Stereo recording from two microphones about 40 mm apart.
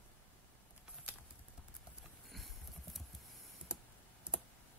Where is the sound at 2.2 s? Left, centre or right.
Centre.